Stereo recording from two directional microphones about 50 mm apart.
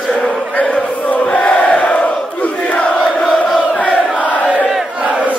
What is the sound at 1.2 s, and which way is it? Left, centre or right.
Crowd, left.